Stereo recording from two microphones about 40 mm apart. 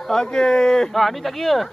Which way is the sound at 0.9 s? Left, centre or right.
Centre.